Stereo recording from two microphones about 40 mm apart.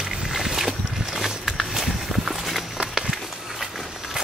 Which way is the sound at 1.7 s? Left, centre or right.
Centre.